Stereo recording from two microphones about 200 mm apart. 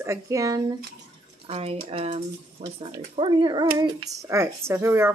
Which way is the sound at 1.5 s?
30° right (ahead or behind).